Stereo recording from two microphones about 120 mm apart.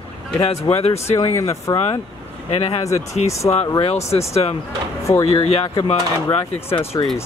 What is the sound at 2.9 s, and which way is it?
Speech, 65° left (ahead or behind).